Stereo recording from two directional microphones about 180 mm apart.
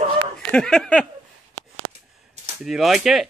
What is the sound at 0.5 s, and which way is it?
Speech, 5° left (ahead or behind).